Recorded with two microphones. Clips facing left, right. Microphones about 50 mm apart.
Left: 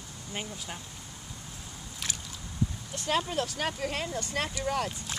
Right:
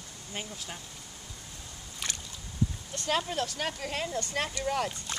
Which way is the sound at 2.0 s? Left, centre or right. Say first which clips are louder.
Even; centre.